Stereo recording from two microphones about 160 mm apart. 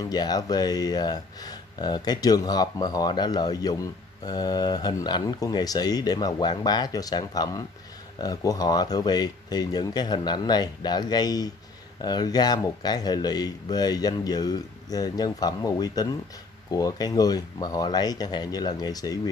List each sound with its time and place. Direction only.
0.0 s speech: 25° left (ahead or behind)